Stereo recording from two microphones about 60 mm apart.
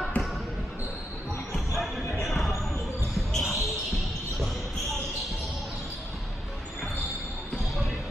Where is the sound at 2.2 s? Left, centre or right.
Centre.